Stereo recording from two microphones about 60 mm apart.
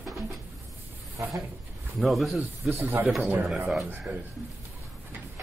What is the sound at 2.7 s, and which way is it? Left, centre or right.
Speech, right.